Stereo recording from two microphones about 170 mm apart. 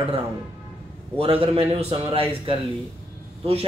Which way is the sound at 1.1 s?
35° right (ahead or behind).